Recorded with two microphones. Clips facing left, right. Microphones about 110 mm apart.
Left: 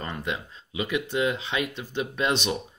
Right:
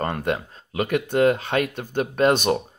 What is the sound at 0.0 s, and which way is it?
Speech, 50° right (ahead or behind).